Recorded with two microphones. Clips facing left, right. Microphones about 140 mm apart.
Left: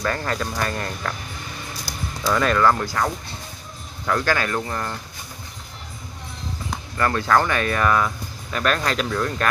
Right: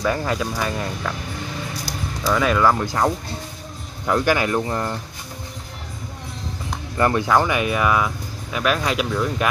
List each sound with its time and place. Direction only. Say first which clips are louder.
0.0 s speech: right 3 dB; 10° right (ahead or behind)
2.2 s speech: right 1 dB; 5° right (ahead or behind)
7.0 s speech: right 2 dB; 15° right (ahead or behind)